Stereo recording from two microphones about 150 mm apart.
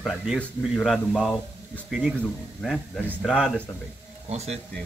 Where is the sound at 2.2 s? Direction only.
5° left (ahead or behind).